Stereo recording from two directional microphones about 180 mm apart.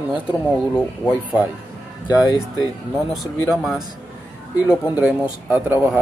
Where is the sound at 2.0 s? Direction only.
20° left (ahead or behind).